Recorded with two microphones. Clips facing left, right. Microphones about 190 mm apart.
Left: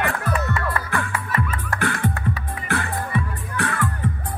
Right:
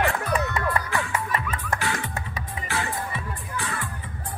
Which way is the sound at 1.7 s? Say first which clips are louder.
Left 8 dB; 55° left (ahead or behind).